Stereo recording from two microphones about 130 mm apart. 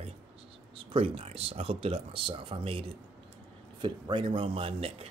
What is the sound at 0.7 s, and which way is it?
Speech, 45° right (ahead or behind).